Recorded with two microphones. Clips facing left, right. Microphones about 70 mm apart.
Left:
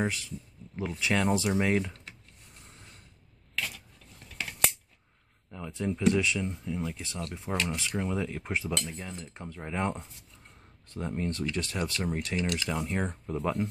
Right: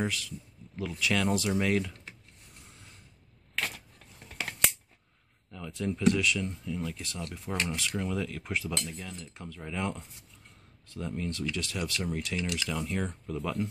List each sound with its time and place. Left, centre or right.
0.0 s speech: left
3.5 s camera: right
5.5 s a sound: left
5.9 s speech: left